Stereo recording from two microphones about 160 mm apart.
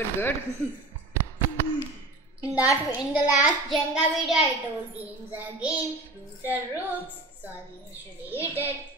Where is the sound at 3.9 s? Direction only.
Centre (ahead or behind).